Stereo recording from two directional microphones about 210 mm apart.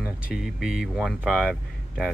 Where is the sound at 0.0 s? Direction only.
5° right (ahead or behind).